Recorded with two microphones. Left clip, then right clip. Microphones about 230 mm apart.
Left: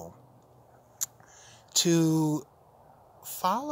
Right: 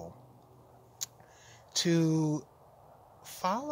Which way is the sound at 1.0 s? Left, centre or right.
Centre.